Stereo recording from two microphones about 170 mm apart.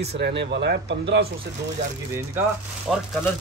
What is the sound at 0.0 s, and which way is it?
Speech, 75° right (ahead or behind).